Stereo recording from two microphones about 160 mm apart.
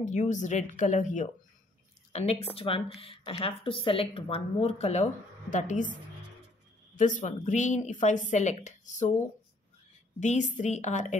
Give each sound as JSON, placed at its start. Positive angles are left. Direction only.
{"t": 0.0, "sound": "a woman's voice", "side_deg": 50}
{"t": 2.5, "sound": "a woman's voice", "side_deg": 35}
{"t": 7.0, "sound": "a woman's voice", "side_deg": 50}
{"t": 10.2, "sound": "a woman's voice", "side_deg": 50}